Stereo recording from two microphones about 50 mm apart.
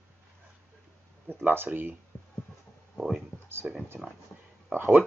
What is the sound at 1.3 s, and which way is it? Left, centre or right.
Speech, right.